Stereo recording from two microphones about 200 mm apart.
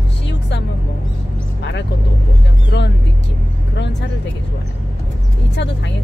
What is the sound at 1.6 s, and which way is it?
Vehicle, 60° left (ahead or behind).